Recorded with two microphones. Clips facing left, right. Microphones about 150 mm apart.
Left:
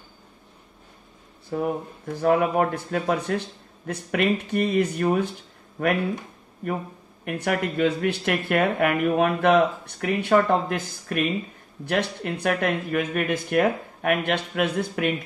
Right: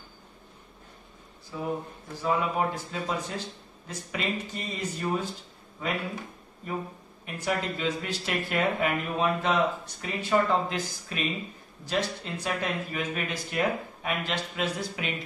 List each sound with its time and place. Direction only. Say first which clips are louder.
1.5 s speech: left 6 dB; 60° left (ahead or behind)
6.6 s speech: left 5 dB; 65° left (ahead or behind)